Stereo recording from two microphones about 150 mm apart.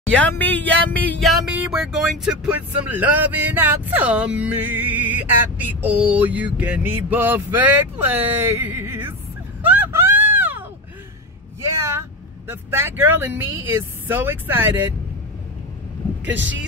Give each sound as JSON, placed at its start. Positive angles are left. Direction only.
{"t": 0.1, "sound": "music", "side_deg": 10}
{"t": 11.6, "sound": "vehicle", "side_deg": -20}
{"t": 12.4, "sound": "music", "side_deg": -15}